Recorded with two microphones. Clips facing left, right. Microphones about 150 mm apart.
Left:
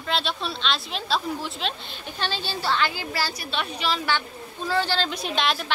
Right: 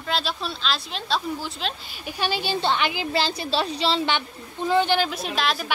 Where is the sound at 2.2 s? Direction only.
15° right (ahead or behind).